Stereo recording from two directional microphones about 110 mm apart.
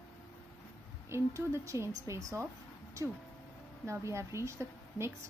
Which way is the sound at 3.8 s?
25° right (ahead or behind).